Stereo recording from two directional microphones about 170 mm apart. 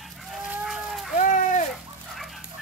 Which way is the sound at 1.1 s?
50° left (ahead or behind).